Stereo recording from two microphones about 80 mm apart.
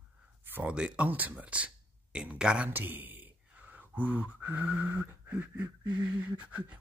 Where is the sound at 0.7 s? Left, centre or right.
Centre.